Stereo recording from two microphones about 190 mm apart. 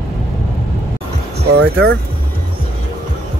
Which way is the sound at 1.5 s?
60° right (ahead or behind).